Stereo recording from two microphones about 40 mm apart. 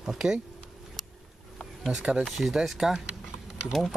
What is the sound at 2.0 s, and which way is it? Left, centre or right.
Speech, right.